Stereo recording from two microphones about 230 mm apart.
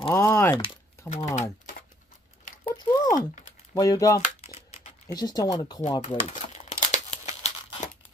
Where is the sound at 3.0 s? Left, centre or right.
Left.